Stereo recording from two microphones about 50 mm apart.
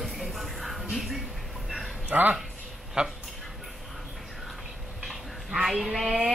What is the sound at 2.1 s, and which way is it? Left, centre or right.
Speech, right.